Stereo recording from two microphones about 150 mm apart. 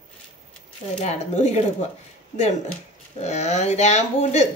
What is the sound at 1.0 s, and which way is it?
Speech, 50° left (ahead or behind).